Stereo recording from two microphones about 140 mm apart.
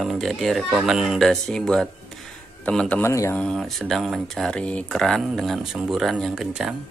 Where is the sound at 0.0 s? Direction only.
Centre (ahead or behind).